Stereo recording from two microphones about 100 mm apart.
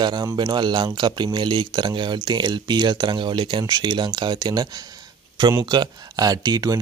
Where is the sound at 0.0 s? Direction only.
45° right (ahead or behind).